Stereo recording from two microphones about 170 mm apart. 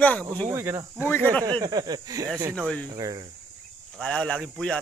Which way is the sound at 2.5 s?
5° left (ahead or behind).